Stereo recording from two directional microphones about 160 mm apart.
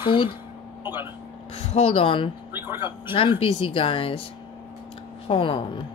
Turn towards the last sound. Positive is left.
turn(degrees=35)  # may be behind; listen again after turning